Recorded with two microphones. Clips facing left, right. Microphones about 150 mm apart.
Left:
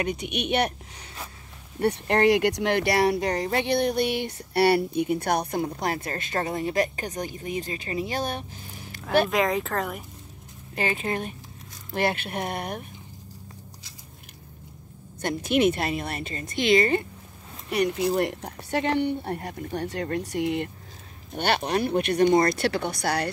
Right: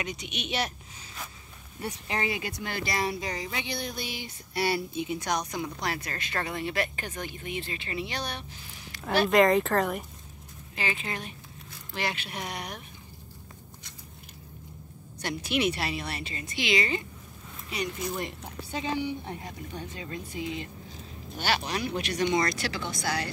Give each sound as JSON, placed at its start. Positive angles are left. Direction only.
{"t": 0.0, "sound": "speech", "side_deg": 55}
{"t": 1.8, "sound": "speech", "side_deg": 65}
{"t": 9.3, "sound": "speech", "side_deg": 0}
{"t": 10.8, "sound": "speech", "side_deg": 45}
{"t": 15.2, "sound": "speech", "side_deg": 50}
{"t": 17.6, "sound": "speech", "side_deg": 65}